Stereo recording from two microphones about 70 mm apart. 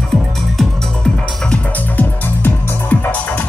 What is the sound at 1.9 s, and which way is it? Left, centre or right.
Music, left.